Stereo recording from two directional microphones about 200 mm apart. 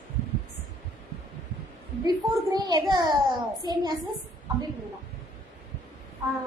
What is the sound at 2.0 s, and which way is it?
A child's voice, 20° right (ahead or behind).